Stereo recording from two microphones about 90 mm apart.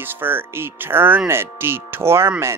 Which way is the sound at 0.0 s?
25° right (ahead or behind).